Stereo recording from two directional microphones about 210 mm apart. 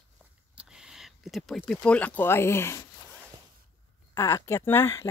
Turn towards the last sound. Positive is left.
turn(degrees=10)  # may be behind; listen again after turning